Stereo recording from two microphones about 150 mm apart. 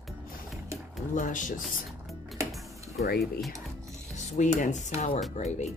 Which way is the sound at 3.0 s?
90° left.